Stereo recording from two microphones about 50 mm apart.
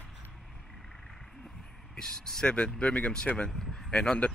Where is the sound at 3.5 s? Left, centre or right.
Centre.